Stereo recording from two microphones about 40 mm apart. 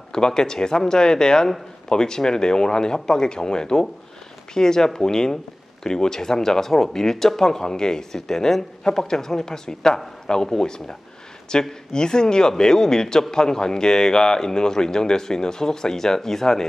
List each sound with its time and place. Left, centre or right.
0.1 s speech: centre